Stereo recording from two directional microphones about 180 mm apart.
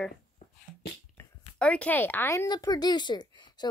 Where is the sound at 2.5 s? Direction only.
25° left (ahead or behind).